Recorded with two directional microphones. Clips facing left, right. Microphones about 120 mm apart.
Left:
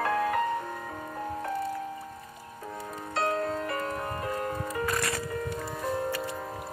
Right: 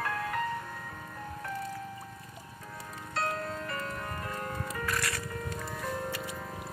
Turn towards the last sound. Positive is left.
turn(degrees=25)  # may be behind; listen again after turning